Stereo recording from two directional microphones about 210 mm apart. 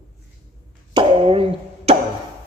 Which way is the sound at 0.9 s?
25° right (ahead or behind).